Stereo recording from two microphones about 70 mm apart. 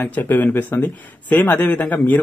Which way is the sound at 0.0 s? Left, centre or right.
Left.